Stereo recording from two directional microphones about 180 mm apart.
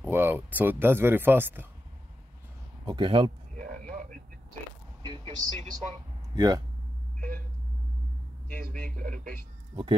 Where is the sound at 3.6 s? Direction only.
50° right (ahead or behind).